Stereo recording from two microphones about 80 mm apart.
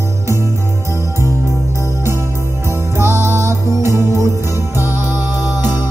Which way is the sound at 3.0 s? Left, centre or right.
Right.